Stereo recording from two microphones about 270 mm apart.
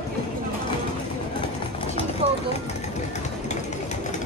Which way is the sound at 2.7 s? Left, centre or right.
Left.